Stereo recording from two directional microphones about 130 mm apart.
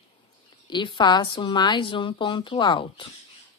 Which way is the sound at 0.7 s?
35° left (ahead or behind).